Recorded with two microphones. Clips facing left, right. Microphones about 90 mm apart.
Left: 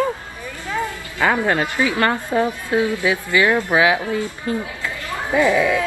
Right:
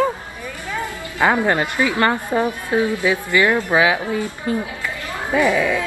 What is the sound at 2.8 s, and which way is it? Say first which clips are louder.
Speech: right 1 dB; 20° left (ahead or behind).